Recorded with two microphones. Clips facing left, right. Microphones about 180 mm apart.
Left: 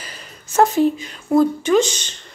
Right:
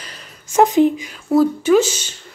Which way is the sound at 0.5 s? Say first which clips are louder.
Right 2 dB; 15° right (ahead or behind).